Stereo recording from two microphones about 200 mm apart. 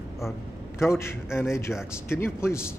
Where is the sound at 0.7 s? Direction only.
10° left (ahead or behind).